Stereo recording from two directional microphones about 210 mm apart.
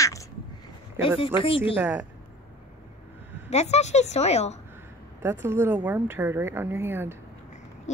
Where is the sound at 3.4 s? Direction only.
30° left (ahead or behind).